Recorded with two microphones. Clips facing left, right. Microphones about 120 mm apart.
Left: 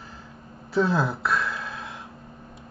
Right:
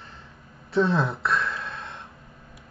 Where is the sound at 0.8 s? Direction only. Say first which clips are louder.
Even; centre (ahead or behind).